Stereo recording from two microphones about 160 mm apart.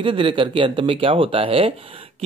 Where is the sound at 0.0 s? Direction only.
30° right (ahead or behind).